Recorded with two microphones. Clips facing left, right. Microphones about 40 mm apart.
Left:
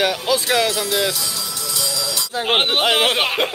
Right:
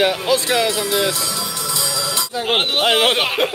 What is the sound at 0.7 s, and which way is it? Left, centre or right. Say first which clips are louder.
Music: right 1 dB; right.